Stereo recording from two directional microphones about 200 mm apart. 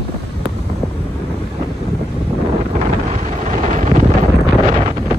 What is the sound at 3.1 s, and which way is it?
Wind noise, 40° right (ahead or behind).